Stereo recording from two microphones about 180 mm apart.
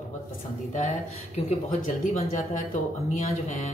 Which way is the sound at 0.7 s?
40° left (ahead or behind).